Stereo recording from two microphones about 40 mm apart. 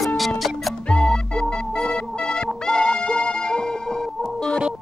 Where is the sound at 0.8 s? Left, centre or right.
Left.